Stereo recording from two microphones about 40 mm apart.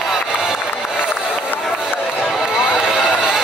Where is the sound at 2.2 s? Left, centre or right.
Centre.